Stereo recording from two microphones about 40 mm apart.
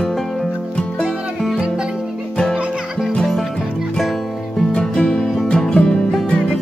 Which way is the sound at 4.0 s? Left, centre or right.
Centre.